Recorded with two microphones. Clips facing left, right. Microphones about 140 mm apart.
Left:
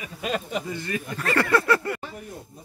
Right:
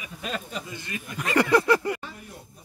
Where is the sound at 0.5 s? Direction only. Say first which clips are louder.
Left 6 dB; 55° left (ahead or behind).